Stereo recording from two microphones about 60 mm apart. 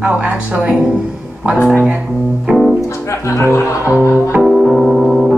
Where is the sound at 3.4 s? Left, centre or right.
Left.